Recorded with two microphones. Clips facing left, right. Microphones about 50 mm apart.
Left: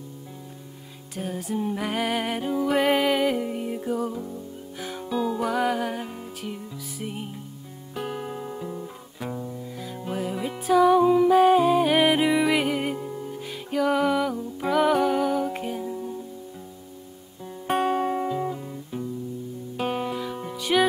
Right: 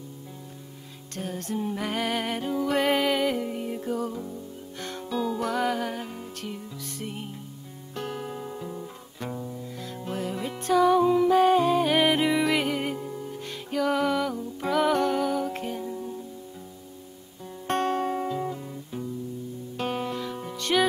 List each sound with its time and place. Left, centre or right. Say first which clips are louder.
1.1 s music: left 2 dB; centre
17.6 s music: left 2 dB; centre